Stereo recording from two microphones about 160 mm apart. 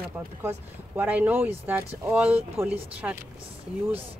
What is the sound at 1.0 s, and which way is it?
Speech, 10° right (ahead or behind).